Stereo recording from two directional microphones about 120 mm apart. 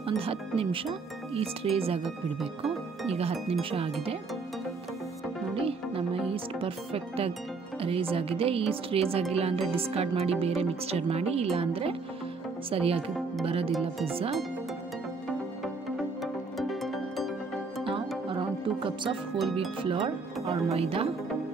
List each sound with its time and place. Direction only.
0.0 s speech: 50° right (ahead or behind)
3.1 s speech: 55° right (ahead or behind)
5.6 s speech: 50° right (ahead or behind)
13.7 s speech: centre (ahead or behind)
14.0 s speech: 50° right (ahead or behind)
16.5 s music: centre (ahead or behind)
17.8 s music: 45° right (ahead or behind)
19.8 s speech: 50° right (ahead or behind)